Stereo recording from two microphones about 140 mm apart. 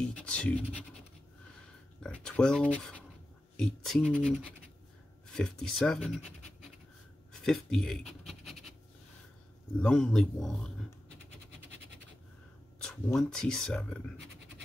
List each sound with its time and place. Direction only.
0.0 s speech: 10° left (ahead or behind)
2.0 s speech: 5° left (ahead or behind)
4.0 s speech: 15° right (ahead or behind)
5.3 s speech: 5° left (ahead or behind)
7.4 s speech: 5° left (ahead or behind)
8.3 s scratch: centre (ahead or behind)
9.8 s speech: 5° left (ahead or behind)
12.8 s speech: 5° left (ahead or behind)